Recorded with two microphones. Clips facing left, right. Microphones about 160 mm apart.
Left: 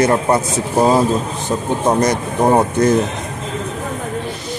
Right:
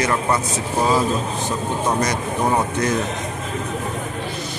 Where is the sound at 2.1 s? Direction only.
40° left (ahead or behind).